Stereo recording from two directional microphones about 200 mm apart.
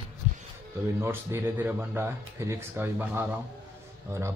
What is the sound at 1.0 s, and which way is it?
Speech, 10° right (ahead or behind).